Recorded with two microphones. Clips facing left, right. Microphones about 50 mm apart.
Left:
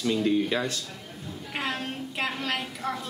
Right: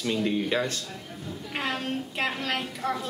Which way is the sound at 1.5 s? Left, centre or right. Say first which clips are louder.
Right 2 dB; centre.